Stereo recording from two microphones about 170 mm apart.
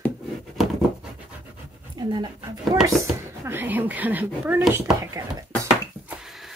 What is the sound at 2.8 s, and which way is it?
Speech, 15° right (ahead or behind).